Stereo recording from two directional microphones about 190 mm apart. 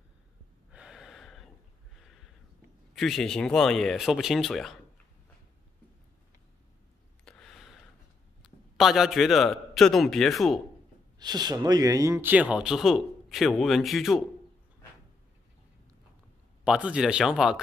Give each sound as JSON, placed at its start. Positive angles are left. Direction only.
{"t": 0.7, "sound": "gasp", "side_deg": -5}
{"t": 2.9, "sound": "speech", "side_deg": 0}
{"t": 7.2, "sound": "a sound", "side_deg": 5}
{"t": 8.7, "sound": "speech", "side_deg": 0}
{"t": 11.1, "sound": "speech", "side_deg": -20}
{"t": 16.6, "sound": "speech", "side_deg": -5}